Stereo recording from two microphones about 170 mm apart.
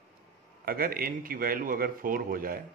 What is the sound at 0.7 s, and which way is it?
Speech, 60° right (ahead or behind).